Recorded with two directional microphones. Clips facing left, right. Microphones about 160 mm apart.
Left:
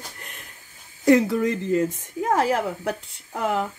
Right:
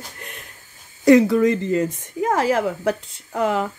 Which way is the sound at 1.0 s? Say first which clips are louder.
Right 5 dB; 90° right.